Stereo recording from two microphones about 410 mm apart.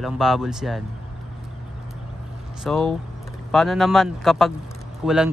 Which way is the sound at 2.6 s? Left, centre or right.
Centre.